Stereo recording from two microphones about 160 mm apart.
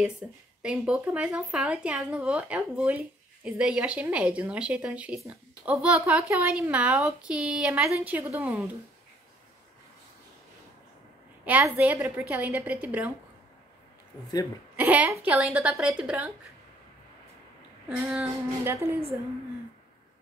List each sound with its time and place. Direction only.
0.2 s speech: 15° right (ahead or behind)
0.6 s speech: 5° right (ahead or behind)
11.4 s speech: 10° right (ahead or behind)
14.8 s speech: 15° right (ahead or behind)
17.8 s speech: 15° right (ahead or behind)